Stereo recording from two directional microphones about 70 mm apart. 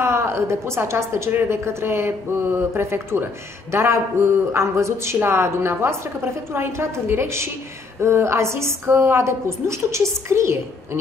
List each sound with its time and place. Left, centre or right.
0.0 s a woman's voice: right